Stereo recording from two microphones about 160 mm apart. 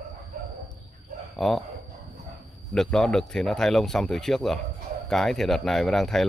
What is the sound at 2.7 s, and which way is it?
Speech, 5° left (ahead or behind).